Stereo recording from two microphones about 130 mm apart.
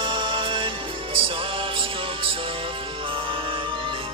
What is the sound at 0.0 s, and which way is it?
Music, 40° right (ahead or behind).